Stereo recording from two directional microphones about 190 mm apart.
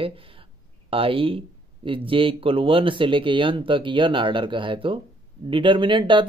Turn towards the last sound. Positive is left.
turn(degrees=-25)  # may be behind; listen again after turning